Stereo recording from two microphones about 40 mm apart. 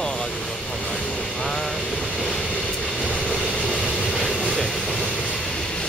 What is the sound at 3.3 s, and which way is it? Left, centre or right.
Vehicle, centre.